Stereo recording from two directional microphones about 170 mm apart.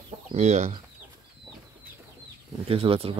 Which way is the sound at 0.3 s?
40° right (ahead or behind).